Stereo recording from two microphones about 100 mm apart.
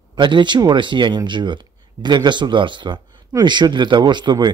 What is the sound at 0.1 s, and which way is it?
Speech, 50° right (ahead or behind).